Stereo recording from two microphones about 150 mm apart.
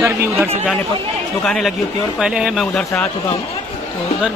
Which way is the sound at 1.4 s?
5° left (ahead or behind).